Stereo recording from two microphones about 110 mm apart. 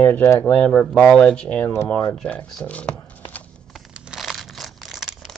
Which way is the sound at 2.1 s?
10° left (ahead or behind).